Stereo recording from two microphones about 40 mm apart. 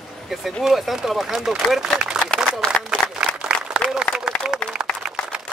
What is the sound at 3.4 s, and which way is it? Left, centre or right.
Applause, right.